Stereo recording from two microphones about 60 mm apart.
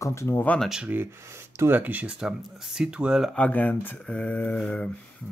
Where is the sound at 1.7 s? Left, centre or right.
Right.